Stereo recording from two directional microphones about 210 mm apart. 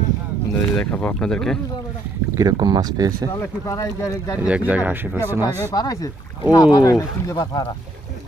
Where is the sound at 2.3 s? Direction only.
20° right (ahead or behind).